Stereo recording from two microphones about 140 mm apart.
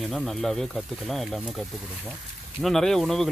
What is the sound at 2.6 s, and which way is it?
Speech, 5° left (ahead or behind).